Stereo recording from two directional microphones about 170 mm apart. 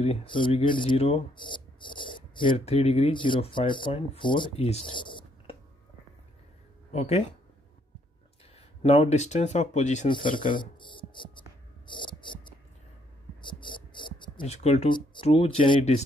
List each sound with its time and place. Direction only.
0.0 s speech: 35° left (ahead or behind)
6.9 s speech: 35° left (ahead or behind)
8.5 s speech: 35° left (ahead or behind)
10.3 s writing: 30° left (ahead or behind)
13.4 s insect: 30° left (ahead or behind)
14.5 s speech: 40° left (ahead or behind)